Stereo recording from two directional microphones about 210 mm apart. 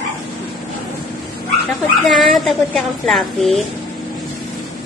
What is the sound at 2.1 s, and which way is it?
A child's voice, centre (ahead or behind).